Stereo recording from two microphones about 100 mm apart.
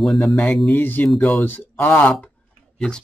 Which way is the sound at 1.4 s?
20° left (ahead or behind).